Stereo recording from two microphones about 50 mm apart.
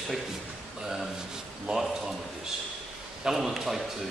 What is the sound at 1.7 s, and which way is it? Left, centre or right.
Speech, centre.